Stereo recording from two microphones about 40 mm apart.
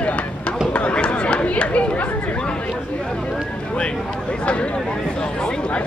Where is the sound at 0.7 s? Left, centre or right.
Left.